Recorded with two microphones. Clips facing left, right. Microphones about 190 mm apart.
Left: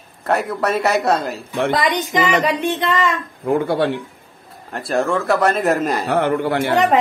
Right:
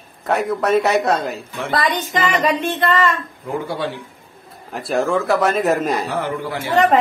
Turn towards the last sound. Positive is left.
turn(degrees=60)  # may be behind; listen again after turning